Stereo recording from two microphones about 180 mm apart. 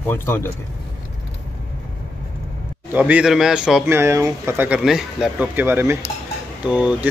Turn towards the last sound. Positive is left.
turn(degrees=-5)  # may be behind; listen again after turning